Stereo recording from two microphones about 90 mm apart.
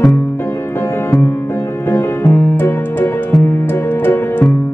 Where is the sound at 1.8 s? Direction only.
25° left (ahead or behind).